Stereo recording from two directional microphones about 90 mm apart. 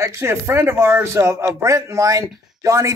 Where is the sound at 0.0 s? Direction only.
30° right (ahead or behind).